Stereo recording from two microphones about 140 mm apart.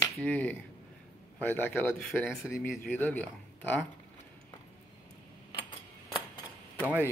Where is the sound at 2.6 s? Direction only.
10° left (ahead or behind).